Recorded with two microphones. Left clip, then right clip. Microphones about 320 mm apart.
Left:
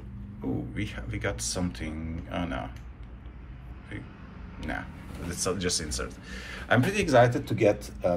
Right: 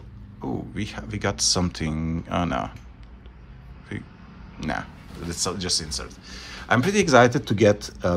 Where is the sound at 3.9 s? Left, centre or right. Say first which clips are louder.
Right 5 dB; centre.